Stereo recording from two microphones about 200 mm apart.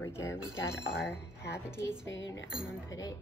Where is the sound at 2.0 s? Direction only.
70° left (ahead or behind).